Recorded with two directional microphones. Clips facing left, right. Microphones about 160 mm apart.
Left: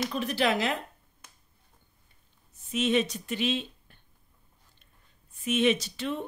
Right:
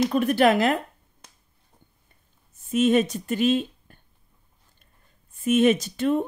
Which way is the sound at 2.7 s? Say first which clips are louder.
Right 6 dB; 50° right (ahead or behind).